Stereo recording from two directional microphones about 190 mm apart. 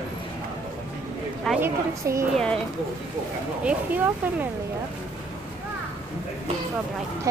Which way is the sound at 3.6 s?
10° right (ahead or behind).